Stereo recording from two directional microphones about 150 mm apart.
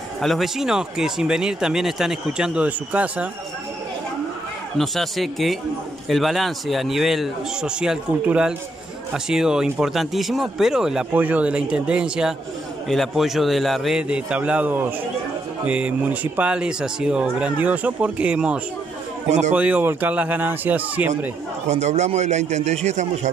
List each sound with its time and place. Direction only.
0.2 s speech: centre (ahead or behind)
4.7 s speech: centre (ahead or behind)
19.2 s a man's voice: 50° right (ahead or behind)
19.5 s speech: 10° right (ahead or behind)
21.6 s a man's voice: 50° right (ahead or behind)